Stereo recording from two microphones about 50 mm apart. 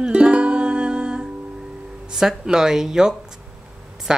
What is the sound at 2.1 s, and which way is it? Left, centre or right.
Speech, centre.